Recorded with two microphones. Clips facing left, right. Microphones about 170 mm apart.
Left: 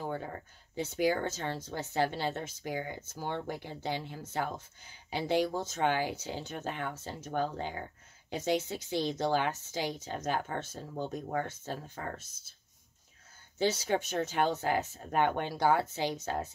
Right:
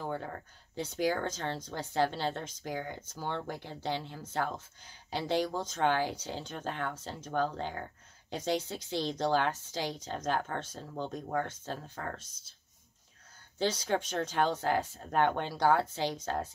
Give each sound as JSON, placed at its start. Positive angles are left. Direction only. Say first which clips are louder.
{"t": 0.1, "sound": "speech", "louder": "even", "side_deg": 5}
{"t": 12.3, "sound": "speech", "louder": "even", "side_deg": 55}
{"t": 13.6, "sound": "speech", "louder": "left 1 dB", "side_deg": 10}